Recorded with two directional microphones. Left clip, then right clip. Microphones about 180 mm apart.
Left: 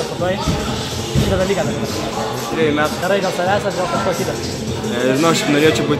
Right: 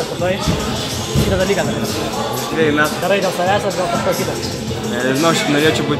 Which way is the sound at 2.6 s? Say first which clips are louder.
Right 2 dB; 10° right (ahead or behind).